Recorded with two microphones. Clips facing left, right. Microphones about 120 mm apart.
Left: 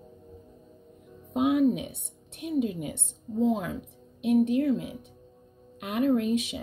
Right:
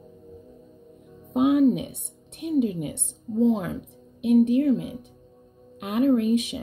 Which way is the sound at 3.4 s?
20° right (ahead or behind).